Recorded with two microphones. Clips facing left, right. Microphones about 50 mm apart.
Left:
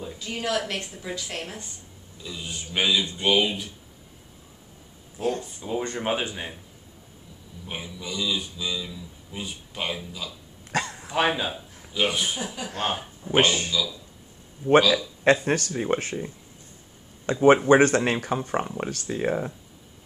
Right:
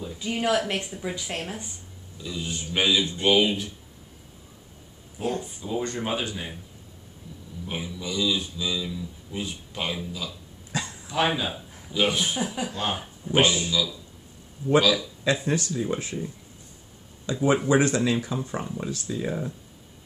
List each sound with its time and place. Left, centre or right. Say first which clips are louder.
0.2 s speech: right 4 dB; centre
2.2 s a man's voice: right 3 dB; centre
5.2 s speech: left 2 dB; centre
5.6 s speech: even; left
7.6 s a man's voice: right 2 dB; centre
10.7 s a sound: left 4 dB; left
11.4 s speech: even; centre
13.4 s speech: even; left
17.3 s speech: left 5 dB; left